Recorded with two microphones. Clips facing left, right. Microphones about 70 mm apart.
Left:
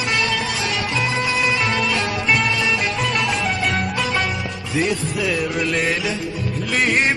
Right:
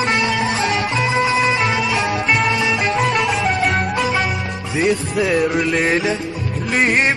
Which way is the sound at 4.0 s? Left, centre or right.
Centre.